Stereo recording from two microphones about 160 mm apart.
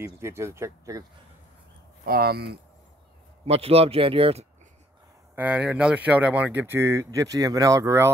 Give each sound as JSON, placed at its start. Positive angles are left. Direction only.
{"t": 0.0, "sound": "speech", "side_deg": -15}
{"t": 2.0, "sound": "speech", "side_deg": -75}
{"t": 3.4, "sound": "speech", "side_deg": -40}
{"t": 5.3, "sound": "speech", "side_deg": -10}